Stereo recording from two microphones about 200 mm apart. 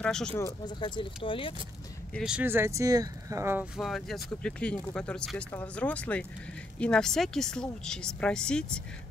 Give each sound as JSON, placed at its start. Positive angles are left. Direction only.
{"t": 0.0, "sound": "speech", "side_deg": 5}
{"t": 0.4, "sound": "speech", "side_deg": 20}
{"t": 2.1, "sound": "speech", "side_deg": -5}